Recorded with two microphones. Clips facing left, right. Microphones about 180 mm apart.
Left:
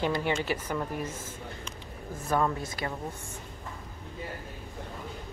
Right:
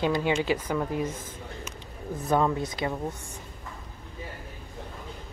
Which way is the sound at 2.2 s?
20° right (ahead or behind).